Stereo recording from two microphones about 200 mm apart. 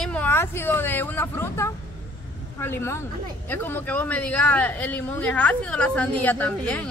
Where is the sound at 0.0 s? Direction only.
10° left (ahead or behind).